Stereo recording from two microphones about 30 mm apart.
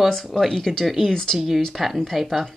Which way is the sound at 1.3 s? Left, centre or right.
Centre.